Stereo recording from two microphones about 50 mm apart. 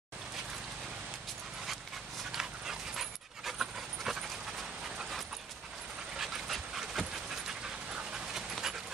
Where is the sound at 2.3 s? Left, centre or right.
Centre.